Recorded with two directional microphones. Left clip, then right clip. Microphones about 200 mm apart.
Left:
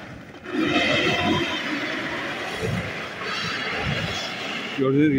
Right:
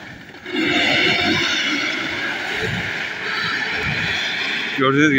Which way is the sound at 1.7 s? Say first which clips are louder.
Right 6 dB; 20° left (ahead or behind).